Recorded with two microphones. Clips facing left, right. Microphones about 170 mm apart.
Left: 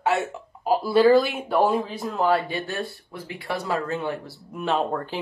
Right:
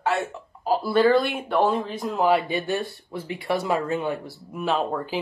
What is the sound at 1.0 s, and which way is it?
Speech, centre (ahead or behind).